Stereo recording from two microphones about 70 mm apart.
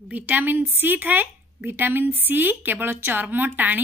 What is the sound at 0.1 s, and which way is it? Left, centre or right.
A woman's voice, right.